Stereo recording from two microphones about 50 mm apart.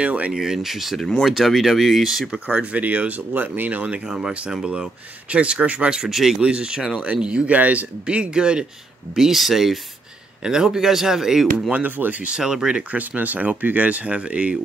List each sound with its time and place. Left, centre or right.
0.0 s speech: right
0.3 s speech: centre
2.4 s speech: right
4.1 s speech: centre
5.9 s speech: centre
6.4 s speech: centre
7.5 s speech: right; by 11.7 s centre
11.7 s speech: right
12.4 s speech: centre
12.9 s speech: right